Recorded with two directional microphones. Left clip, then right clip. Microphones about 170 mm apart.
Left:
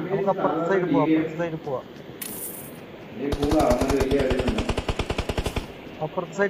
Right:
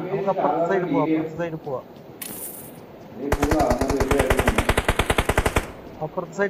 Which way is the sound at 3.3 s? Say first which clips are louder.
Right 3 dB; 20° right (ahead or behind).